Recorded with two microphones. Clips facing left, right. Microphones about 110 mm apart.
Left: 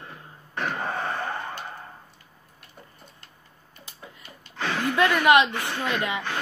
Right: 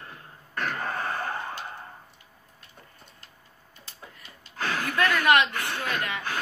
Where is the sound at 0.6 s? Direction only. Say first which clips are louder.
Left 2 dB; 25° left (ahead or behind).